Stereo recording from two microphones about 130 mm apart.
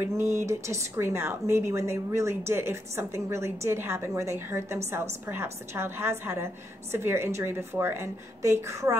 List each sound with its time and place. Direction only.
0.2 s speech: 20° right (ahead or behind)